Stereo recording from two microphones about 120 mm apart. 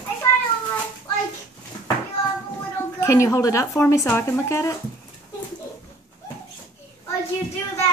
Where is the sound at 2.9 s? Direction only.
25° left (ahead or behind).